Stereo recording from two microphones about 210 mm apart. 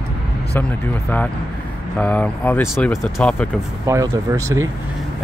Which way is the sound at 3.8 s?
15° right (ahead or behind).